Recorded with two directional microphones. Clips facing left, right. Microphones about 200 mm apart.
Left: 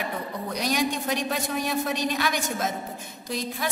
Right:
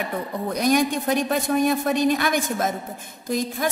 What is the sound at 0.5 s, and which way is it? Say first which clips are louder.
Speech: right 6 dB; 50° right (ahead or behind).